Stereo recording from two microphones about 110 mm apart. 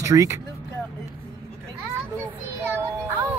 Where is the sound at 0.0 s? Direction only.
30° right (ahead or behind).